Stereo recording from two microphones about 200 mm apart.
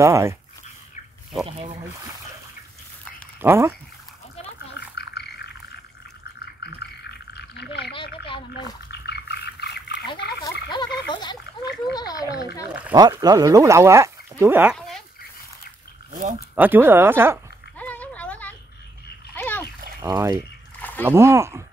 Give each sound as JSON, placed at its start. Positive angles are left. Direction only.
{"t": 0.0, "sound": "speech", "side_deg": -15}
{"t": 3.3, "sound": "speech", "side_deg": -10}
{"t": 4.7, "sound": "a sound", "side_deg": 55}
{"t": 8.9, "sound": "dog", "side_deg": 55}
{"t": 10.7, "sound": "a sound", "side_deg": 20}
{"t": 12.9, "sound": "speech", "side_deg": -20}
{"t": 14.8, "sound": "dog", "side_deg": 0}
{"t": 16.5, "sound": "speech", "side_deg": -10}
{"t": 17.7, "sound": "a sound", "side_deg": 5}
{"t": 19.3, "sound": "splash", "side_deg": 10}
{"t": 20.0, "sound": "speech", "side_deg": -15}